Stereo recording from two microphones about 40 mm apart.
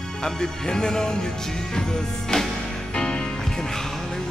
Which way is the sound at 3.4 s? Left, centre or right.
Centre.